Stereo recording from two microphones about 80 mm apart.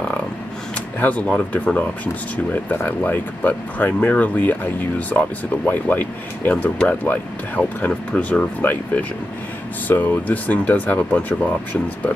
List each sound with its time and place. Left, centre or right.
0.9 s speech: centre